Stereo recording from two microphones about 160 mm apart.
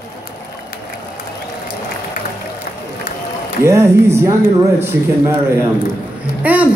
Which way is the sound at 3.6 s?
15° right (ahead or behind).